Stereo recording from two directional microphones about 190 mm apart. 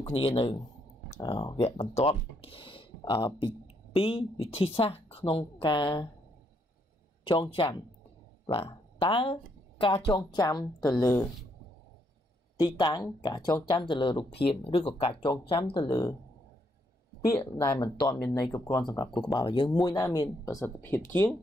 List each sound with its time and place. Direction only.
0.1 s speech: 30° left (ahead or behind)
7.2 s speech: 25° left (ahead or behind)
12.5 s speech: 20° left (ahead or behind)
17.4 s speech: 15° left (ahead or behind)